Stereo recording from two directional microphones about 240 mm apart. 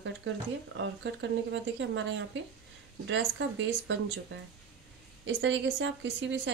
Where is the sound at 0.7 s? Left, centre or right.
Right.